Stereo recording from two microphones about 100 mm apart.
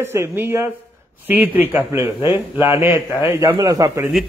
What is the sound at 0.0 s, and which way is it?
A man's voice, 25° right (ahead or behind).